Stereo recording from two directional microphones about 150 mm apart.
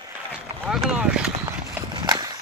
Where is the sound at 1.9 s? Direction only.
25° right (ahead or behind).